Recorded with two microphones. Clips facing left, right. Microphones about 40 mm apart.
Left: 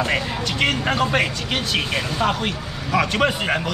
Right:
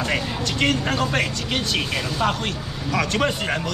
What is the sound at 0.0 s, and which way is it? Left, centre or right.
Speech, centre.